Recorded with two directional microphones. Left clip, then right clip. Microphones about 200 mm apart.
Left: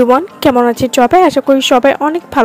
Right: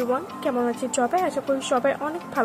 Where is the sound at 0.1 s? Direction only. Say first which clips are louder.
Left 15 dB; 50° left (ahead or behind).